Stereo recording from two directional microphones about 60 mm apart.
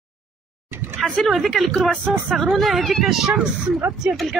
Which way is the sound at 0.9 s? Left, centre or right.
Centre.